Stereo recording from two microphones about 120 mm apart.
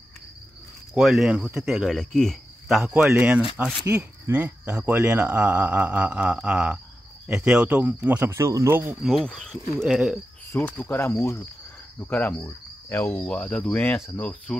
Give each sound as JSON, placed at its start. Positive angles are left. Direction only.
{"t": 0.9, "sound": "speech", "side_deg": -5}
{"t": 3.2, "sound": "speech", "side_deg": -10}
{"t": 9.0, "sound": "speech", "side_deg": 5}
{"t": 9.8, "sound": "speech", "side_deg": -5}
{"t": 10.5, "sound": "cricket", "side_deg": 15}
{"t": 12.0, "sound": "speech", "side_deg": 15}